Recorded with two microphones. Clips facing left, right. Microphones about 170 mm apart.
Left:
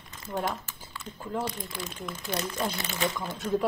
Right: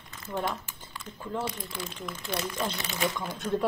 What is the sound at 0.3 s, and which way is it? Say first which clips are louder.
Speech: left 1 dB; 15° left (ahead or behind).